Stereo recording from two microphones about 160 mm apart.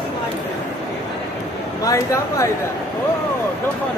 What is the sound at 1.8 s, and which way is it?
Speech, 20° left (ahead or behind).